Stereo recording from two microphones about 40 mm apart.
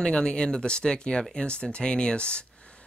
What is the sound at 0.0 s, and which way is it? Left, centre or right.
Speech, left.